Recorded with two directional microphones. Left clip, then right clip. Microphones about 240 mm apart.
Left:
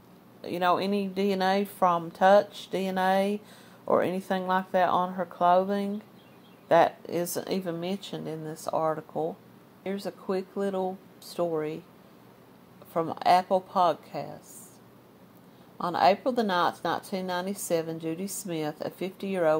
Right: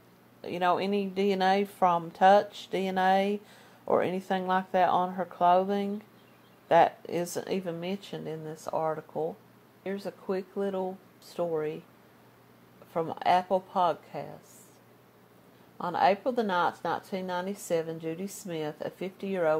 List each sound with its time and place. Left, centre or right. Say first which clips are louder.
0.4 s a woman's voice: left 2 dB; centre
12.9 s a woman's voice: left 3 dB; centre
15.8 s a woman's voice: left 2 dB; centre